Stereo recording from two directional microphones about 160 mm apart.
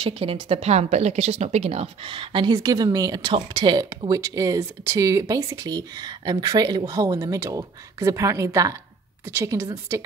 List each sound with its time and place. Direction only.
0.0 s a woman's voice: 35° right (ahead or behind); by 10.0 s 20° right (ahead or behind)